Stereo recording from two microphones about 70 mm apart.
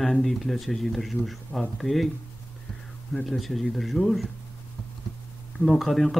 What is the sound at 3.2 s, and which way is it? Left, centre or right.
Speech, centre.